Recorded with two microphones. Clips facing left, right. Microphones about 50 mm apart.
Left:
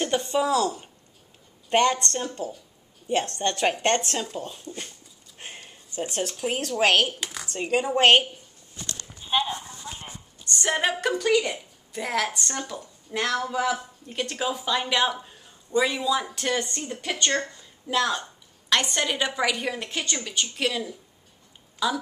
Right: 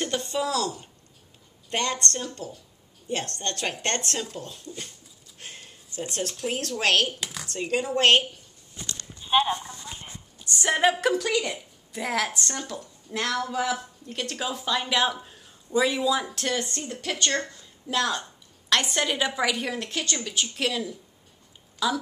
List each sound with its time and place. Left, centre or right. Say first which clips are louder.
0.0 s a woman's voice: left 3 dB; centre
7.2 s a sound: left 1 dB; centre
7.5 s a woman's voice: left 2 dB; centre
9.3 s a woman's voice: right 3 dB; centre
18.7 s a woman's voice: even; centre